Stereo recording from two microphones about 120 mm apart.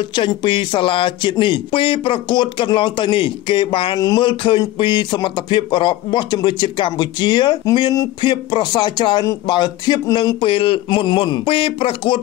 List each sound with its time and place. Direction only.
0.1 s speech: 40° left (ahead or behind)
10.4 s speech: 50° left (ahead or behind)